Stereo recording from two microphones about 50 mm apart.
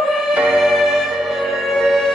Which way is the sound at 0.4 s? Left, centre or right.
Centre.